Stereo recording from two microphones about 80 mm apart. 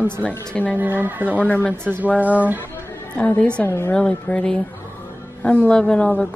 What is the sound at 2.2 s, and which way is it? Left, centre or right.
Speech, centre.